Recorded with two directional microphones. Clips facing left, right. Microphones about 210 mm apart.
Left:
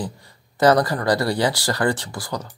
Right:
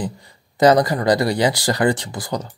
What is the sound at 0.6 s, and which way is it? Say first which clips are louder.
Speech: right 3 dB; 15° right (ahead or behind).